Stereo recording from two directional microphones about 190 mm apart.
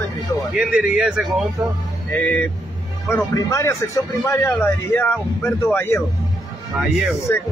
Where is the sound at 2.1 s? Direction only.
10° left (ahead or behind).